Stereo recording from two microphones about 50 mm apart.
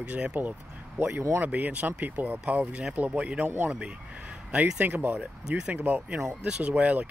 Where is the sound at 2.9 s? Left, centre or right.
Right.